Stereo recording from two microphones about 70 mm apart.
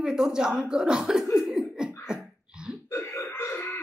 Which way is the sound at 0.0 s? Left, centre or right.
Centre.